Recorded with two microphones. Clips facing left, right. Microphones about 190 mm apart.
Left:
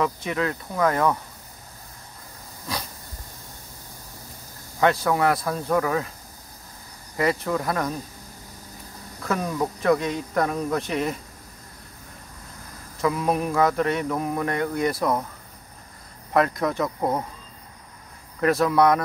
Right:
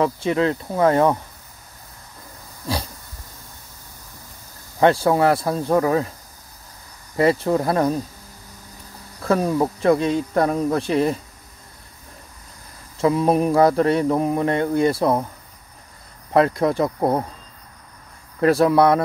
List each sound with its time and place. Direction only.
0.0 s mantra: 30° right (ahead or behind)
2.7 s dog: 30° right (ahead or behind)
4.7 s mantra: 30° right (ahead or behind)
7.2 s speech: 30° right (ahead or behind)
9.3 s speech: 30° right (ahead or behind)
12.9 s mantra: 30° right (ahead or behind)
16.3 s speech: 30° right (ahead or behind)
18.4 s speech: 30° right (ahead or behind)